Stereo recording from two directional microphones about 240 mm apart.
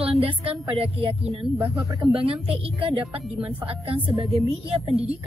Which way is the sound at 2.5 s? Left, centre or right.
Centre.